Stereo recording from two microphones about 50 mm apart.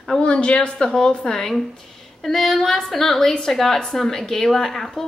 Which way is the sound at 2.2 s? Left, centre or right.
Centre.